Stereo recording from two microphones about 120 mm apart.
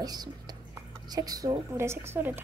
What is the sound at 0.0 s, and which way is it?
A woman's voice, 35° right (ahead or behind).